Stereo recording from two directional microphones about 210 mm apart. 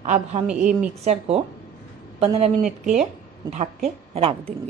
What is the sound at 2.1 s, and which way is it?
A woman's voice, 30° right (ahead or behind).